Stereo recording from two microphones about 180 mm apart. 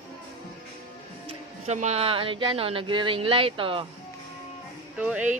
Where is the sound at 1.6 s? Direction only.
40° right (ahead or behind).